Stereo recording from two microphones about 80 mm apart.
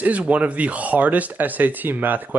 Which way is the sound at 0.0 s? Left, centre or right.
Centre.